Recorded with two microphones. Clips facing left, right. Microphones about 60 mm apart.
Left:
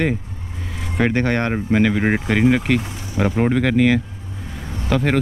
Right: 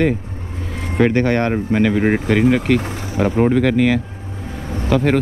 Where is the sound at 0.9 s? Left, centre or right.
Centre.